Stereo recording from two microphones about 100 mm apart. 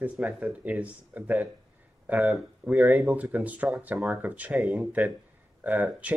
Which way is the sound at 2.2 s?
5° right (ahead or behind).